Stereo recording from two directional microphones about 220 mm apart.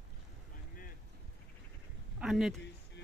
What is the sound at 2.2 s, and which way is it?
Speech, 5° right (ahead or behind).